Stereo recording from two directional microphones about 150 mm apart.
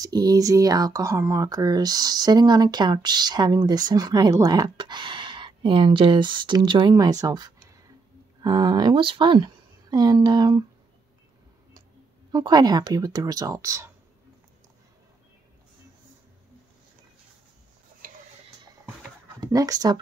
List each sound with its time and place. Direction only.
0.0 s speech: 25° right (ahead or behind)
12.3 s speech: 25° right (ahead or behind)
19.4 s speech: 25° right (ahead or behind)